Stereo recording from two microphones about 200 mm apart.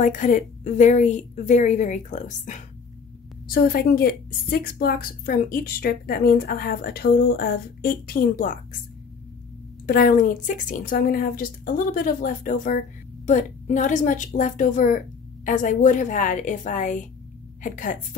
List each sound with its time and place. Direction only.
0.0 s a woman's voice: 40° left (ahead or behind)
9.8 s a woman's voice: 45° left (ahead or behind)